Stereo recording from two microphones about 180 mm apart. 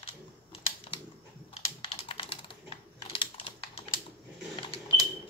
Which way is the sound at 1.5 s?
30° left (ahead or behind).